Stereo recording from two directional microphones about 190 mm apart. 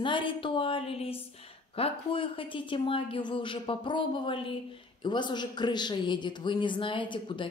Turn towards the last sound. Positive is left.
turn(degrees=25)  # may be behind; listen again after turning